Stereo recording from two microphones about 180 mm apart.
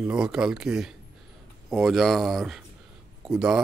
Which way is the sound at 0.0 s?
5° right (ahead or behind).